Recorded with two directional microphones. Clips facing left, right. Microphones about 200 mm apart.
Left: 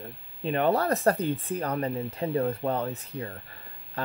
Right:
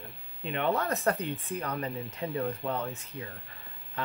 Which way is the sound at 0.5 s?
40° left (ahead or behind).